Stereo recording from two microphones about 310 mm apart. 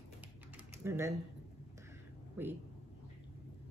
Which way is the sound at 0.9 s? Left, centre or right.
Centre.